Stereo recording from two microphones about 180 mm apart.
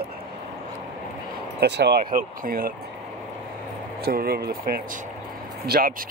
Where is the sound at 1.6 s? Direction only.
70° right (ahead or behind).